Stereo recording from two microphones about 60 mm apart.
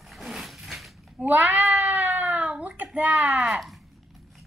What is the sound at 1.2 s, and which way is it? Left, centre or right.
Cat, right.